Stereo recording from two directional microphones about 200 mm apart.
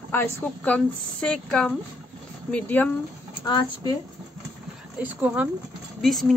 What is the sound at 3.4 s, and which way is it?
Speech, 20° left (ahead or behind).